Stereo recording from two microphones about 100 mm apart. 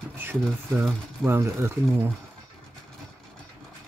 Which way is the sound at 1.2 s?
25° right (ahead or behind).